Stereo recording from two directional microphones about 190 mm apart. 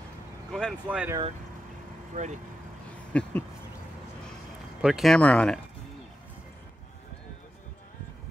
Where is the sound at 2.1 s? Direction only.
40° right (ahead or behind).